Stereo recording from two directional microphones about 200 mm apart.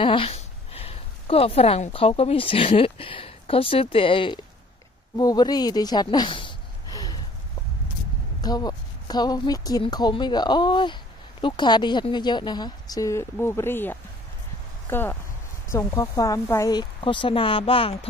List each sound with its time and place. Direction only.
0.0 s speech: 25° left (ahead or behind)
5.1 s a sound: 20° left (ahead or behind)
8.4 s speech: 20° left (ahead or behind)